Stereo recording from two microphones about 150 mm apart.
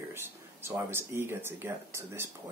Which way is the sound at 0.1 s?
15° right (ahead or behind).